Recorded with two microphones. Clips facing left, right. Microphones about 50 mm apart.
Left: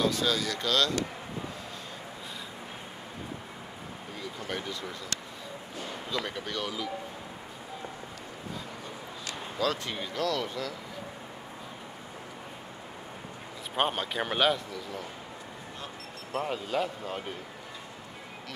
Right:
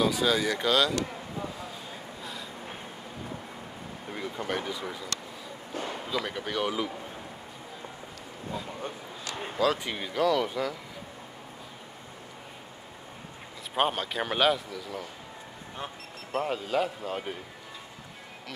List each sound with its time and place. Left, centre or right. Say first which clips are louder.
0.0 s speech: right 3 dB; centre
4.5 s speech: right 2 dB; centre
6.0 s speech: left 1 dB; centre
6.6 s speech: right 7 dB; right
9.6 s speech: right 3 dB; centre
13.7 s speech: right 1 dB; centre
16.3 s speech: right 2 dB; centre